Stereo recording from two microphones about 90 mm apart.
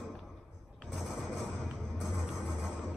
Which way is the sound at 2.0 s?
5° right (ahead or behind).